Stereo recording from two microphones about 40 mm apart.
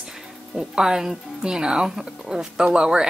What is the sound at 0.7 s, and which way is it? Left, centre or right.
Speech, centre.